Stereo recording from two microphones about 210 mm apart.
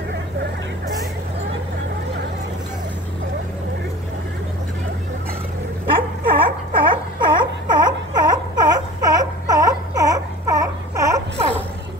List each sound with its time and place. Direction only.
5.9 s baby cry: 25° right (ahead or behind)